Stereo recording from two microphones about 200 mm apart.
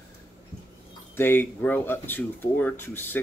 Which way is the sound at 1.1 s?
10° left (ahead or behind).